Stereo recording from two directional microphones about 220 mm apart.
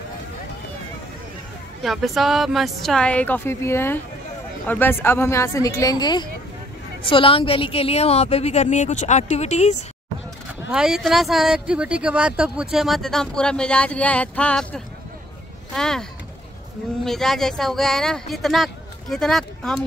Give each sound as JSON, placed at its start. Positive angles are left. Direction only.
{"t": 1.8, "sound": "a woman's voice", "side_deg": 0}
{"t": 10.7, "sound": "speech", "side_deg": -5}